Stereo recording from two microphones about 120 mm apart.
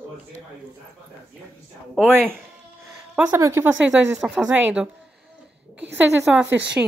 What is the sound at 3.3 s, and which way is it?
Speech, 25° right (ahead or behind).